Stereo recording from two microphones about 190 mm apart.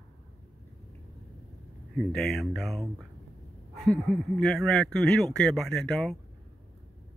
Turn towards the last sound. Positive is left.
turn(degrees=5)  # may be behind; listen again after turning